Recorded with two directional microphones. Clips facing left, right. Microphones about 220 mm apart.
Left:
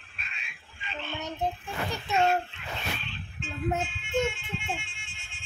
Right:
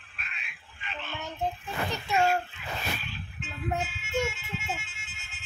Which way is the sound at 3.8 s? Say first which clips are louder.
Left 2 dB; 5° right (ahead or behind).